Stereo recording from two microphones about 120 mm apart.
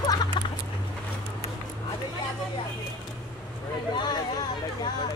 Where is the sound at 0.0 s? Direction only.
35° left (ahead or behind).